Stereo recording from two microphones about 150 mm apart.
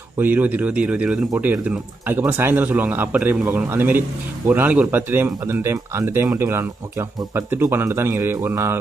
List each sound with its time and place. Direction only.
0.2 s speech: 10° right (ahead or behind)